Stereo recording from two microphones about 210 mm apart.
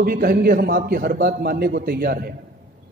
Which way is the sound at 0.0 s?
45° right (ahead or behind).